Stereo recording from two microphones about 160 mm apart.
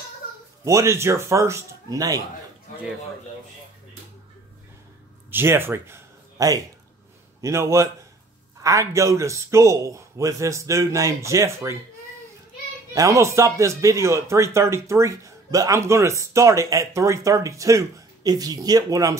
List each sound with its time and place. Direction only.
0.7 s speech: 20° right (ahead or behind)
5.3 s a man's voice: 15° right (ahead or behind)
12.9 s speech: 20° right (ahead or behind)